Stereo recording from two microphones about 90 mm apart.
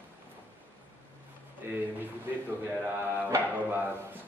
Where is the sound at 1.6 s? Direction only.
25° right (ahead or behind).